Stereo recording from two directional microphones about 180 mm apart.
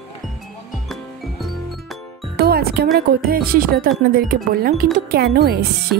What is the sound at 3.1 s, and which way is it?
Speech, 55° right (ahead or behind).